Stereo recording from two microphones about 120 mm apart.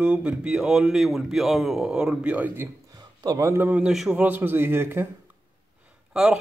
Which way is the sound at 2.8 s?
35° right (ahead or behind).